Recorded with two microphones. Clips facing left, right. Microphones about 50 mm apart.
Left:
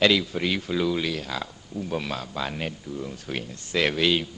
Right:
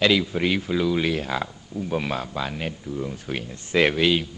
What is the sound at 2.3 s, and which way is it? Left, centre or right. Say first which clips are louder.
Speech: right 1 dB; centre.